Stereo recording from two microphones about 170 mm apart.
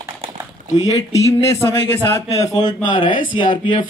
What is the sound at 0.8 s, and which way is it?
Speech, 15° left (ahead or behind).